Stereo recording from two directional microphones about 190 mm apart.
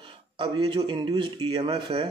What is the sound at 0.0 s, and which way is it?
Speech, 25° right (ahead or behind).